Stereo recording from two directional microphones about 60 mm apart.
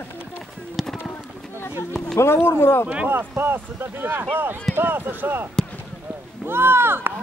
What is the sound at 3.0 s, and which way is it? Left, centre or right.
Speech, right.